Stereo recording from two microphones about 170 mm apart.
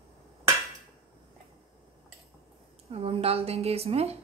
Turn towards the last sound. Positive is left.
turn(degrees=-35)  # may be behind; listen again after turning